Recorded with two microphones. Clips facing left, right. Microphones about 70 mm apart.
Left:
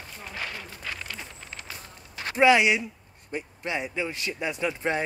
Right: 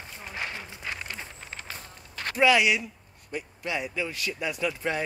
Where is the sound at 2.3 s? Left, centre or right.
Left.